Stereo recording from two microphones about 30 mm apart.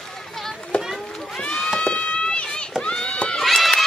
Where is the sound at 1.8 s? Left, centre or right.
Left.